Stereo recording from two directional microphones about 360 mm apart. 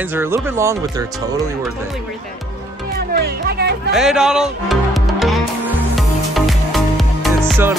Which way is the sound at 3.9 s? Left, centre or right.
Centre.